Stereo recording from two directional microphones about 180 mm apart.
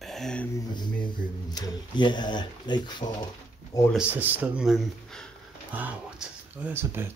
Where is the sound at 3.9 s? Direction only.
5° right (ahead or behind).